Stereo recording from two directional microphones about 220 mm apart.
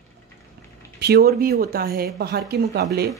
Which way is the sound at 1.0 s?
45° right (ahead or behind).